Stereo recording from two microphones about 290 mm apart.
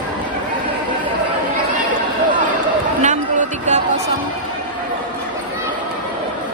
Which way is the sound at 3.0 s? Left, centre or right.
Right.